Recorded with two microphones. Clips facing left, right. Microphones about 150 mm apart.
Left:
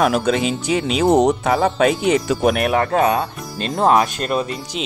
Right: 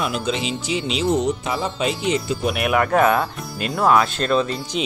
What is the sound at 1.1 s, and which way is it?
Speech, 65° left (ahead or behind).